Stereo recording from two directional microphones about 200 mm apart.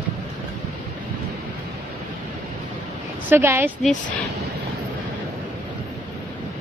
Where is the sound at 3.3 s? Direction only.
10° right (ahead or behind).